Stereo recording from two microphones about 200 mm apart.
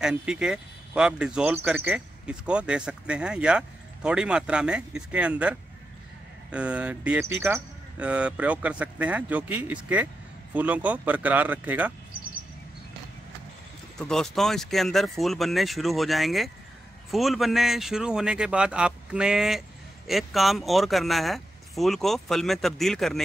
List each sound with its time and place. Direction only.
0.0 s speech: 5° right (ahead or behind)
13.9 s speech: 5° left (ahead or behind)